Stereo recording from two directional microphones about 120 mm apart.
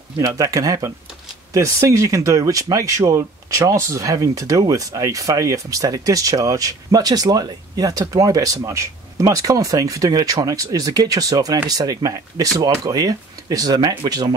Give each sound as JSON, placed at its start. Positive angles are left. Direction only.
{"t": 0.2, "sound": "speech", "side_deg": -25}